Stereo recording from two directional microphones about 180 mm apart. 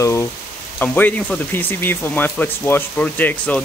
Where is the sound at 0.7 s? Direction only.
10° left (ahead or behind).